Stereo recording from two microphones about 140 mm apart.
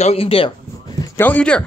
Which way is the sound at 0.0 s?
45° left (ahead or behind).